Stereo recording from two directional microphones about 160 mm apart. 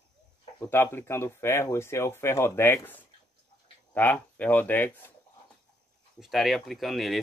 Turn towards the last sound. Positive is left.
turn(degrees=0)  # may be behind; listen again after turning